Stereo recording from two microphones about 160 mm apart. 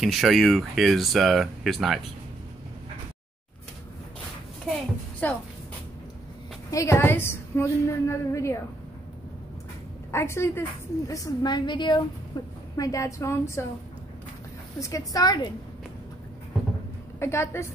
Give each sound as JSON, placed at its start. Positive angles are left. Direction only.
{"t": 0.0, "sound": "speech", "side_deg": 0}
{"t": 5.2, "sound": "a woman's voice", "side_deg": 10}
{"t": 6.7, "sound": "a woman's voice", "side_deg": 20}
{"t": 10.1, "sound": "a woman's voice", "side_deg": 15}
{"t": 14.8, "sound": "a woman's voice", "side_deg": 20}
{"t": 17.2, "sound": "a woman's voice", "side_deg": 15}